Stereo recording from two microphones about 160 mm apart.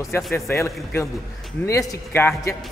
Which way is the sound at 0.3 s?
15° left (ahead or behind).